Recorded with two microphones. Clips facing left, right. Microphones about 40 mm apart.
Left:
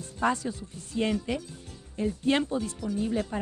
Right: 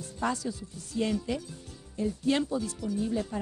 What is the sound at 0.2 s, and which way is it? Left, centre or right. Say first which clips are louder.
Speech: left 4 dB; left.